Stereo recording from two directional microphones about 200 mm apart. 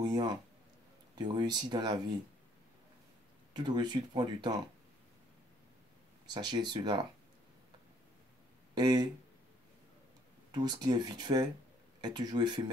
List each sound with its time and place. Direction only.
0.0 s speech: 20° right (ahead or behind)
3.5 s speech: 20° right (ahead or behind)
6.3 s speech: 20° right (ahead or behind)
8.7 s speech: 20° right (ahead or behind)
10.5 s speech: 20° right (ahead or behind)